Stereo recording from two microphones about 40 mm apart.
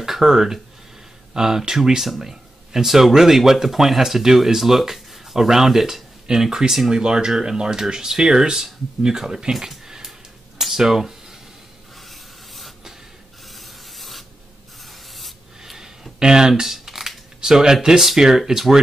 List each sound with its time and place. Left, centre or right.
0.0 s speech: centre
7.0 s speech: right
12.1 s rub: centre
15.6 s a sound: centre
17.8 s speech: centre